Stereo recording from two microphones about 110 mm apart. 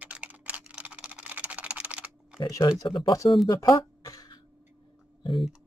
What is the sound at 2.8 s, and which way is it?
Speech, 45° left (ahead or behind).